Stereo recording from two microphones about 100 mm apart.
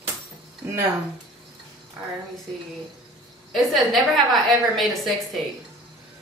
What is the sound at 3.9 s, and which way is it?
A woman's voice, centre (ahead or behind).